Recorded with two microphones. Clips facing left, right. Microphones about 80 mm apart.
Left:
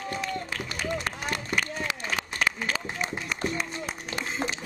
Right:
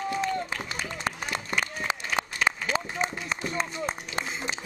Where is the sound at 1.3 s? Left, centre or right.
Right.